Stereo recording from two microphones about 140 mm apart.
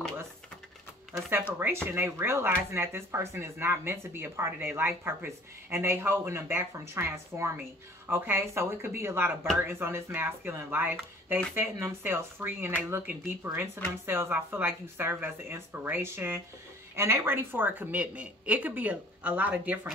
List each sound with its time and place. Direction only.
1.6 s speech: 15° right (ahead or behind)